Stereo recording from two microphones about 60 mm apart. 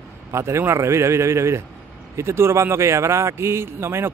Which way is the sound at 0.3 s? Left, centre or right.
Right.